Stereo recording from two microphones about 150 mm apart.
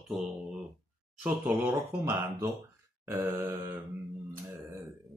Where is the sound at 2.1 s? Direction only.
20° right (ahead or behind).